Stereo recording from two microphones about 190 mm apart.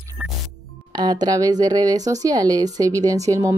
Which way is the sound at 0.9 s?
20° right (ahead or behind).